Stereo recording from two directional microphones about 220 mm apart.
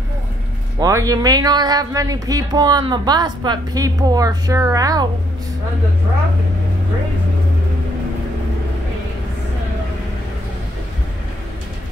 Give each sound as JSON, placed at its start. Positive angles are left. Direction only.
{"t": 0.7, "sound": "speech", "side_deg": -15}